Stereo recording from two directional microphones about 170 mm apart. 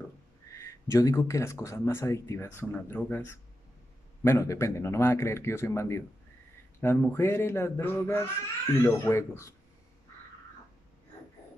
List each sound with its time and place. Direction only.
0.8 s speech: 15° left (ahead or behind)